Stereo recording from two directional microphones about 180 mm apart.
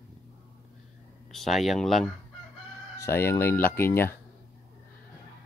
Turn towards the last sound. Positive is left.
turn(degrees=10)  # may be behind; listen again after turning